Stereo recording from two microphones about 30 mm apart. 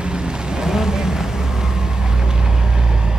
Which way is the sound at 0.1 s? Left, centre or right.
Right.